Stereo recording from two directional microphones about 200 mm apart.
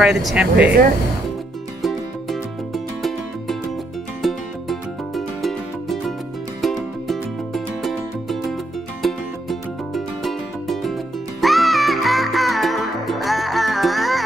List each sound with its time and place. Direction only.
0.0 s speech: centre (ahead or behind)
1.8 s music: centre (ahead or behind)